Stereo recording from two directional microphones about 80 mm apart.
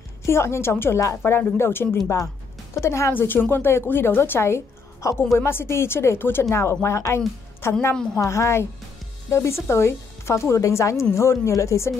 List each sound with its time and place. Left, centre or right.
0.3 s a woman's voice: left
7.9 s a woman's voice: centre
8.2 s speech: left